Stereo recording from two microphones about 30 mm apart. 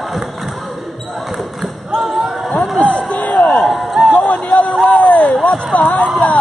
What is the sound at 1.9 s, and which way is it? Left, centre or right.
Basketball bounce, centre.